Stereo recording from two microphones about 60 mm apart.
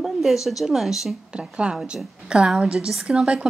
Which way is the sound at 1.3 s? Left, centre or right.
Centre.